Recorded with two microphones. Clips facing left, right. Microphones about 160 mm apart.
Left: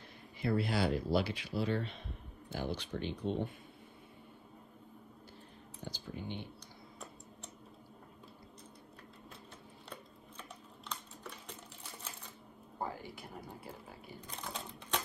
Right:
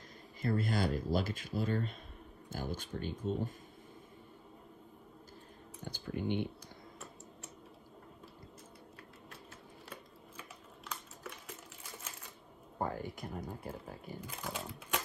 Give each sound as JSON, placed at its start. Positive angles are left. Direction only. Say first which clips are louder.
{"t": 0.4, "sound": "speech", "louder": "left 1 dB", "side_deg": -45}
{"t": 5.9, "sound": "speech", "louder": "right 7 dB", "side_deg": -60}
{"t": 10.9, "sound": "typing", "louder": "even", "side_deg": -5}
{"t": 12.7, "sound": "speech", "louder": "right 4 dB", "side_deg": -50}
{"t": 14.2, "sound": "speech", "louder": "right 1 dB", "side_deg": -5}